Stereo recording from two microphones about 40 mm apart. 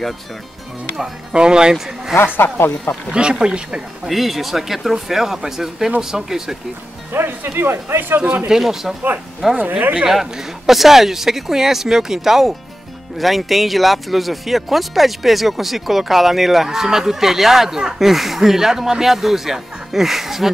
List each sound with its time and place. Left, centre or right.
1.3 s speech: right
2.2 s speech: left
3.1 s speech: right
4.1 s speech: centre
7.1 s speech: right
7.5 s speech: right
8.5 s speech: centre
9.6 s speech: right
10.0 s speech: centre